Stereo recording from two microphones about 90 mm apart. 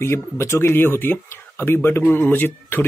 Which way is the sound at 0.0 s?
30° left (ahead or behind).